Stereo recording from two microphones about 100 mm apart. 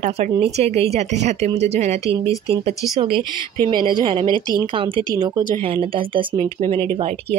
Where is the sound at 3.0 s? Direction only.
55° right (ahead or behind).